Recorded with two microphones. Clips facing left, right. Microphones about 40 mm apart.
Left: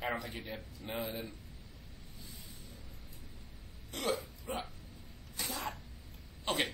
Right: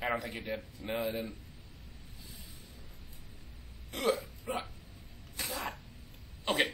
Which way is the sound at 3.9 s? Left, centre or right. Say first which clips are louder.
Right 4 dB; centre.